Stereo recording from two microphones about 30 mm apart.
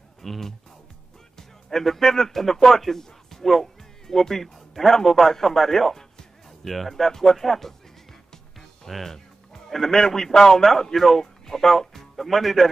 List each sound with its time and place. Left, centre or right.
0.2 s speech: centre
1.3 s music: centre
2.0 s speech: centre